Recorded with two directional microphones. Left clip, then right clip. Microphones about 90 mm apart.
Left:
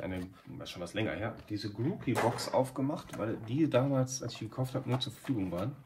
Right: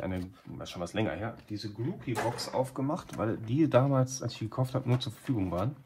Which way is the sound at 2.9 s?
35° right (ahead or behind).